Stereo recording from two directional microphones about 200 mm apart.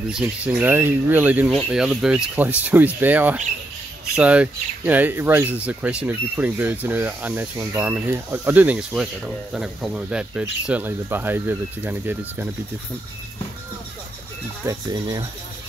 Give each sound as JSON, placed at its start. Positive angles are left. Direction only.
{"t": 0.1, "sound": "speech", "side_deg": -5}
{"t": 14.7, "sound": "speech", "side_deg": -20}